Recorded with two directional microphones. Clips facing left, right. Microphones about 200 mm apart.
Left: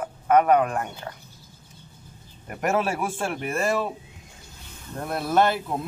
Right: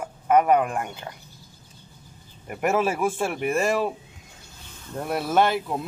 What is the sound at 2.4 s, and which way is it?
Speech, 5° right (ahead or behind).